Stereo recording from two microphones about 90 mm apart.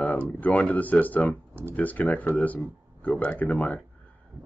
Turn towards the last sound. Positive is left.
turn(degrees=15)  # may be behind; listen again after turning